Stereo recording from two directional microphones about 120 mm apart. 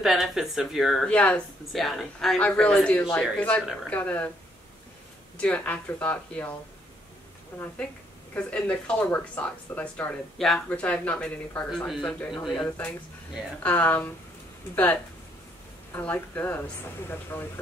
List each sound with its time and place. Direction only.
0.0 s speech: centre (ahead or behind)
5.4 s speech: 10° left (ahead or behind)
7.5 s speech: 10° left (ahead or behind)
15.9 s speech: 15° left (ahead or behind)